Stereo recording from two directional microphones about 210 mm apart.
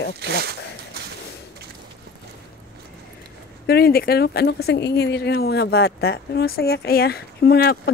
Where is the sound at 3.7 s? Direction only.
50° left (ahead or behind).